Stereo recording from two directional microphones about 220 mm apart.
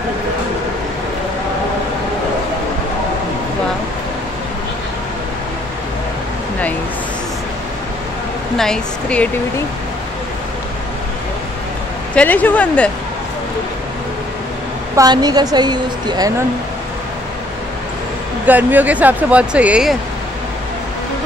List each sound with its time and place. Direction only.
8.5 s speech: 5° left (ahead or behind)
12.2 s speech: 5° left (ahead or behind)
15.0 s speech: 20° right (ahead or behind)
18.4 s speech: 10° right (ahead or behind)